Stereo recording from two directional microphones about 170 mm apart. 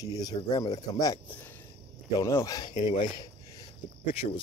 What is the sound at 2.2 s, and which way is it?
Speech, 20° left (ahead or behind).